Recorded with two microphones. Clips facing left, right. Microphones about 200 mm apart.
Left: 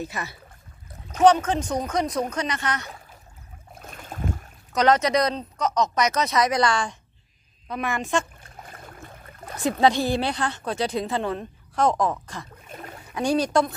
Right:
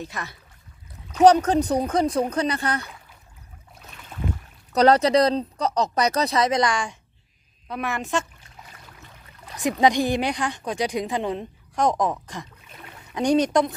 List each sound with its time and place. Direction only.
0.0 s speech: 5° left (ahead or behind)
1.2 s speech: 40° right (ahead or behind)
3.7 s boat: 50° left (ahead or behind)
4.7 s speech: 35° right (ahead or behind); by 7.0 s 15° right (ahead or behind)
7.6 s a woman's voice: 5° right (ahead or behind)
8.4 s a sound: 50° left (ahead or behind)
9.6 s a woman's voice: 15° right (ahead or behind)
12.4 s a sound: 45° left (ahead or behind)
13.1 s speech: 20° right (ahead or behind)